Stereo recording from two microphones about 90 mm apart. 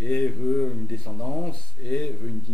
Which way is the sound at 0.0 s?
15° left (ahead or behind).